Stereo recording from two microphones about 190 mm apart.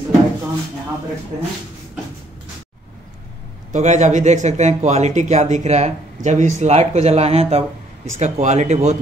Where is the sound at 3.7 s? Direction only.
40° right (ahead or behind).